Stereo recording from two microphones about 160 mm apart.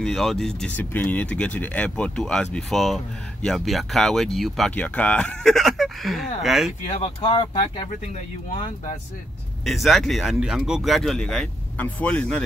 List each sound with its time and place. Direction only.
0.0 s speech: centre (ahead or behind)
7.0 s speech: 35° left (ahead or behind)
8.5 s speech: 45° left (ahead or behind)
9.7 s speech: centre (ahead or behind)